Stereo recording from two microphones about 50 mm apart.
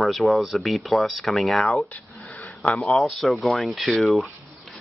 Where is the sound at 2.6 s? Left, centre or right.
Left.